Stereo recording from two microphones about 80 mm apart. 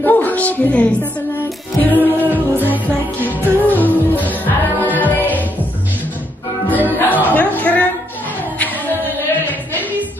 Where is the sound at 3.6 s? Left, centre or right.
Left.